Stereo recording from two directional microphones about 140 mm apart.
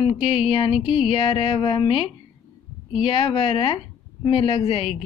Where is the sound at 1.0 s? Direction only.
40° left (ahead or behind).